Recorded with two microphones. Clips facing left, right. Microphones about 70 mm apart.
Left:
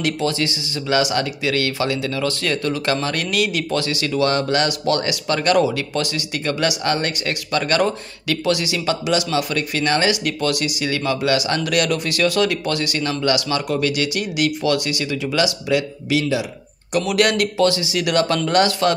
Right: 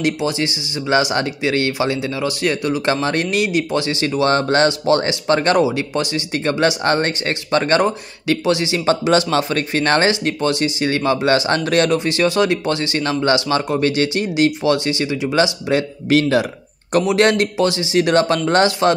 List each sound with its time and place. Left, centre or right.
0.0 s speech: right
5.6 s speech: centre
16.1 s speech: right
17.0 s speech: right